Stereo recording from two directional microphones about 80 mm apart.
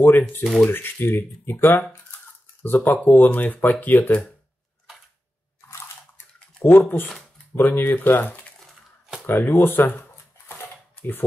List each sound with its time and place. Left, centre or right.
0.4 s speech: centre
0.7 s speech: left
6.6 s speech: left